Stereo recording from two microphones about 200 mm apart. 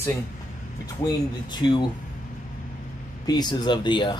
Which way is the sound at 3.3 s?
20° left (ahead or behind).